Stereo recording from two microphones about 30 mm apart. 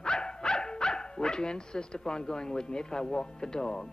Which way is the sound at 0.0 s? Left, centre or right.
Left.